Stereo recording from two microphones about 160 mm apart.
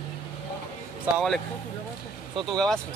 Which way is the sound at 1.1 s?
15° right (ahead or behind).